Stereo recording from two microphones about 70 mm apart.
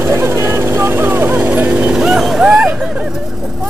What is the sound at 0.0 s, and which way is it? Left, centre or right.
Vehicle, right.